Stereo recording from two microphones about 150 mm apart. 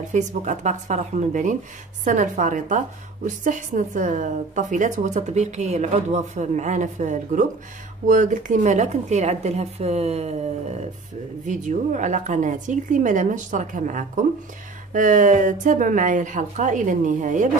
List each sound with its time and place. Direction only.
0.1 s a woman's voice: 50° right (ahead or behind)